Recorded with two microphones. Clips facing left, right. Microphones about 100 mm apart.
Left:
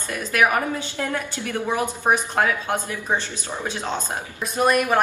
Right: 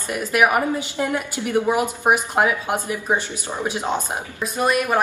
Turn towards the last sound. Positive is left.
turn(degrees=-10)  # may be behind; listen again after turning